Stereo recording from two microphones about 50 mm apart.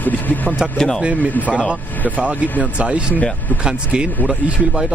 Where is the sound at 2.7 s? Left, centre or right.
Right.